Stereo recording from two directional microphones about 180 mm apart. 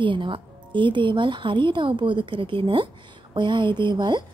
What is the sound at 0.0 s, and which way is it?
Speech, 25° right (ahead or behind).